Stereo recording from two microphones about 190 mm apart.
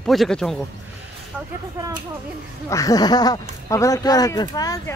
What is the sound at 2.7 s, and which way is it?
Speech, 20° left (ahead or behind).